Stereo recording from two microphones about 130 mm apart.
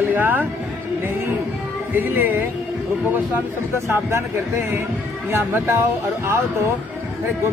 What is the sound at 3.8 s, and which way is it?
Speech, 20° right (ahead or behind).